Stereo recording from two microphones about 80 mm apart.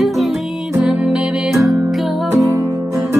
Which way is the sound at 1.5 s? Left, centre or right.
Centre.